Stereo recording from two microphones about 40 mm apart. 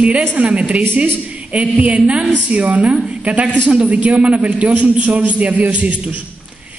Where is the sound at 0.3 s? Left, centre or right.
Right.